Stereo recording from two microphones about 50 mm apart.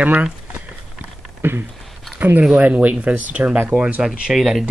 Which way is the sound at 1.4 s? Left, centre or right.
Right.